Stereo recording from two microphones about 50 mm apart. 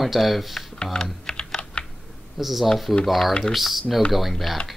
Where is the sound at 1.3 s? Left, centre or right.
Centre.